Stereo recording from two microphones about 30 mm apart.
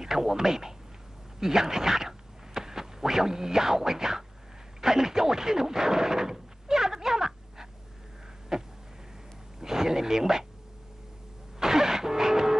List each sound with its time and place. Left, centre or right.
0.0 s speech: centre
4.8 s a sound: centre
9.6 s speech: centre
11.6 s music: centre